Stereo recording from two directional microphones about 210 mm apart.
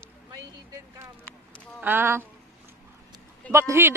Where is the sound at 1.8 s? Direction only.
10° right (ahead or behind).